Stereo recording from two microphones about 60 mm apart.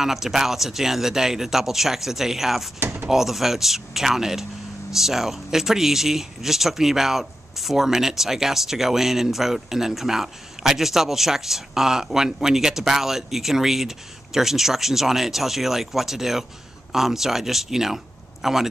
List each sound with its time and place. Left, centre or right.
0.0 s speech: centre
2.8 s speech: right
3.1 s speech: centre